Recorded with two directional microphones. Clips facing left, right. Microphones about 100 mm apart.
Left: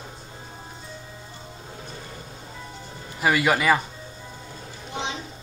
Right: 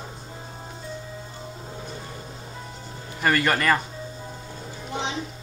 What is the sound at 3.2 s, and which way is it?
Speech, 5° left (ahead or behind).